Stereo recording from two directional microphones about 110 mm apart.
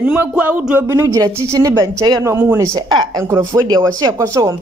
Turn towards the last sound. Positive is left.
turn(degrees=-30)  # may be behind; listen again after turning